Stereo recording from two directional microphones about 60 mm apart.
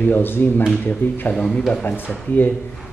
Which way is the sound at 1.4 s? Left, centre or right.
Centre.